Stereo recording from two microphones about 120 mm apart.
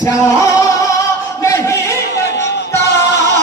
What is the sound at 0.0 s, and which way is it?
Music, 25° left (ahead or behind).